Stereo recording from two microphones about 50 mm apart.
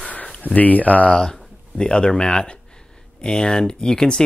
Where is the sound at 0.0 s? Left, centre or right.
Left.